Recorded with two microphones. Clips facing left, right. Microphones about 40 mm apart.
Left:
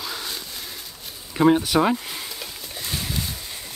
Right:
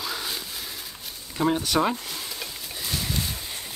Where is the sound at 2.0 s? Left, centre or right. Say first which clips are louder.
Left 2 dB; centre.